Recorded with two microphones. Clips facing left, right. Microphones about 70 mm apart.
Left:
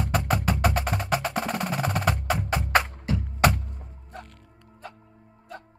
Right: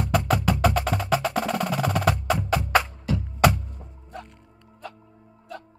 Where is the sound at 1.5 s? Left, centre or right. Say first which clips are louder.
Right 3 dB; left.